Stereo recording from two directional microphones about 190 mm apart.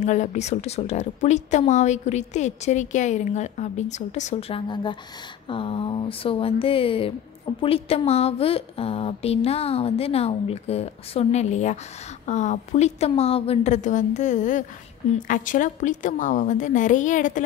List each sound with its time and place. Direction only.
0.0 s speech: 40° left (ahead or behind)